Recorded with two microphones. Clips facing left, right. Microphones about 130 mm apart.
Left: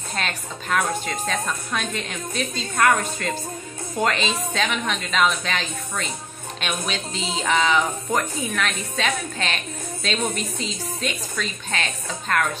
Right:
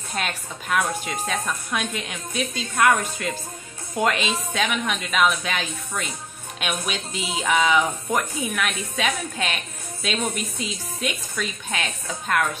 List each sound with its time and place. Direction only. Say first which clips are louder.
0.1 s a woman's voice: even; 10° right (ahead or behind)